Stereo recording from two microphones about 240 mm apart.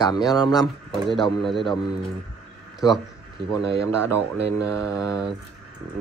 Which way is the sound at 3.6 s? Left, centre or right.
Centre.